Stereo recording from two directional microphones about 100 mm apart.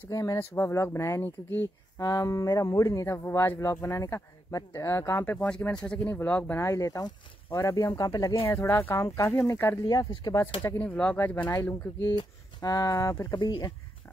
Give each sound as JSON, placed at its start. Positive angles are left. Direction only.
{"t": 0.1, "sound": "speech", "side_deg": 30}
{"t": 5.4, "sound": "speech", "side_deg": 10}
{"t": 6.6, "sound": "speech", "side_deg": 30}
{"t": 8.5, "sound": "speech", "side_deg": 25}
{"t": 9.8, "sound": "speech", "side_deg": 45}
{"t": 10.6, "sound": "speech", "side_deg": 20}
{"t": 12.1, "sound": "speech", "side_deg": 50}